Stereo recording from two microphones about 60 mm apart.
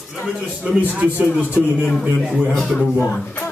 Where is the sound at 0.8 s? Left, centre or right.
Right.